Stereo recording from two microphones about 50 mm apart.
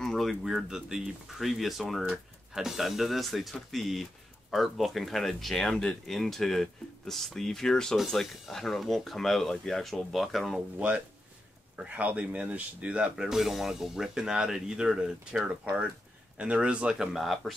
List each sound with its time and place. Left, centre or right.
0.0 s speech: centre
0.6 s speech: centre
11.9 s speech: right
13.1 s speech: centre
16.3 s speech: right
17.2 s speech: centre